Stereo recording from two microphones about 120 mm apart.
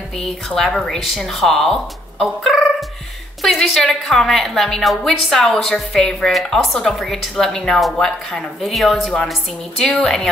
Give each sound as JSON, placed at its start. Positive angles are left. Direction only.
{"t": 0.2, "sound": "a woman's voice", "side_deg": 5}